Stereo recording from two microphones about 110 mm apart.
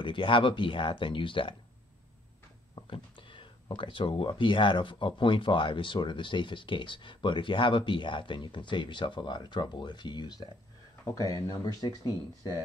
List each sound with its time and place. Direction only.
0.0 s speech: 50° left (ahead or behind)
2.7 s speech: 50° left (ahead or behind); by 11.6 s 35° left (ahead or behind)